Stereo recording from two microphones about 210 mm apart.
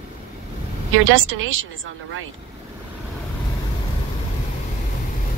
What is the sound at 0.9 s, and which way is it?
Speech, 70° right (ahead or behind).